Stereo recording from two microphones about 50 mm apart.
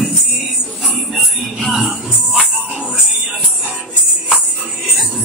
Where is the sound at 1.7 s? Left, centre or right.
Centre.